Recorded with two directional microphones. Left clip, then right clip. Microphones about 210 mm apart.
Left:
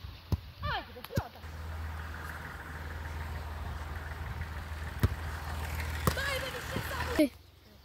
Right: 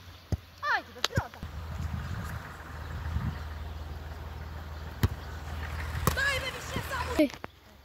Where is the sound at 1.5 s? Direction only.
45° left (ahead or behind).